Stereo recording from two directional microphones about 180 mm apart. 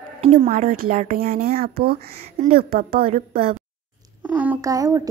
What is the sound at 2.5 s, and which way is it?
Speech, 55° right (ahead or behind).